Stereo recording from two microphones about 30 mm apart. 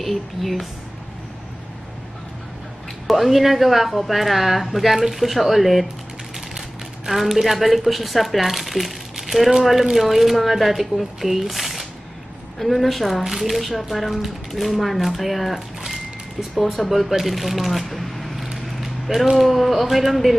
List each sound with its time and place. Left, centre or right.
0.0 s speech: centre
3.1 s speech: centre
7.4 s speech: centre
17.2 s shuffling cards: centre
19.3 s speech: centre